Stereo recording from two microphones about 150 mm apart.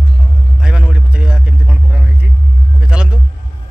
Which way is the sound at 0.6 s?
5° right (ahead or behind).